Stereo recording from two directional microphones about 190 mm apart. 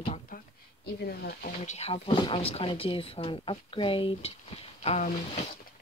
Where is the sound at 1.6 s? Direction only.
35° left (ahead or behind).